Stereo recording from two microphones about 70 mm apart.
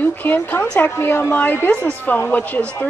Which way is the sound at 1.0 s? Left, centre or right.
Left.